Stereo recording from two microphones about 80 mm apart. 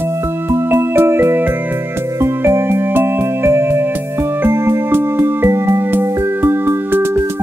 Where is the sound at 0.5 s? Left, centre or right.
Right.